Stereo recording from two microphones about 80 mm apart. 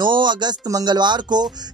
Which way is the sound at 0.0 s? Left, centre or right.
Right.